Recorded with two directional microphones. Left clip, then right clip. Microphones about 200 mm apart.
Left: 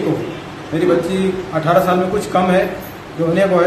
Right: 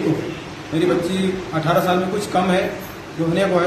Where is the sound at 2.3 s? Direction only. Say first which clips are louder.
Left 4 dB; 5° left (ahead or behind).